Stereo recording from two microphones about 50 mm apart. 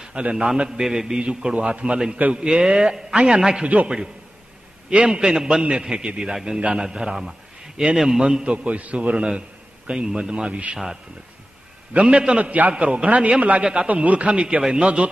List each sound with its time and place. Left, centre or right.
0.0 s a man's voice: right
0.7 s a man's voice: centre
3.6 s a man's voice: right
8.6 s a man's voice: right
11.9 s a man's voice: right